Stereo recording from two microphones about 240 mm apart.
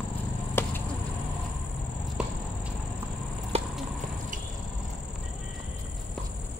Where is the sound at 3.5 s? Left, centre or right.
Right.